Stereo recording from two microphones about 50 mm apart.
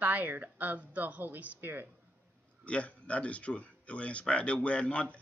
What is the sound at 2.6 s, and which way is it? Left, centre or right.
Speech, left.